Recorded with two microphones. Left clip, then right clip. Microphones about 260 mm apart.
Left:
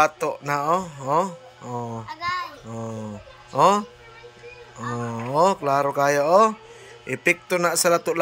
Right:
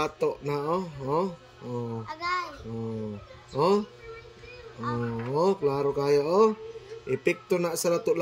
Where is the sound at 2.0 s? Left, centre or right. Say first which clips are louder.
Left 2 dB; centre.